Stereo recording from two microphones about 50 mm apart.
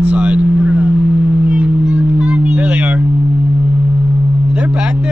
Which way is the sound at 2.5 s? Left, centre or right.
Right.